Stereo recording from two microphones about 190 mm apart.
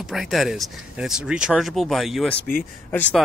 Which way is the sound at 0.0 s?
Centre (ahead or behind).